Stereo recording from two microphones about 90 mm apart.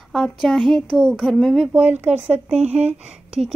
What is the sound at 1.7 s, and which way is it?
Speech, 20° right (ahead or behind).